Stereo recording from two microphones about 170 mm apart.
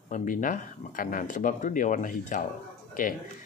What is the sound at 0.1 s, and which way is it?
Speech, 50° left (ahead or behind).